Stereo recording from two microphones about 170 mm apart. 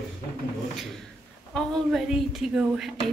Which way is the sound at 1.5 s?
Centre (ahead or behind).